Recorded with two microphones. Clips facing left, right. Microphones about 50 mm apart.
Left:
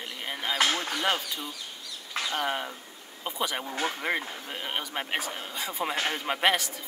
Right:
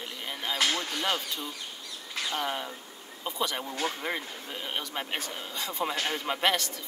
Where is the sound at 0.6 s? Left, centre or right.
Left.